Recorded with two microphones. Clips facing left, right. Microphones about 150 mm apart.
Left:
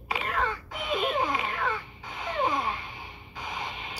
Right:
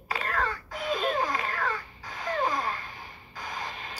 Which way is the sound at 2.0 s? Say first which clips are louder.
Even; 20° left (ahead or behind).